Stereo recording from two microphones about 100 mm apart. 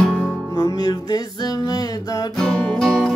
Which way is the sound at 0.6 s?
40° left (ahead or behind).